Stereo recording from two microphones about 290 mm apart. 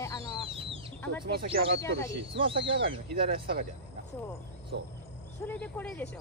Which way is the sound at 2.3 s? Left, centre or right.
Centre.